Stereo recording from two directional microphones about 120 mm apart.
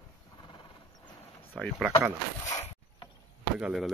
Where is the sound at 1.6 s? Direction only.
5° left (ahead or behind).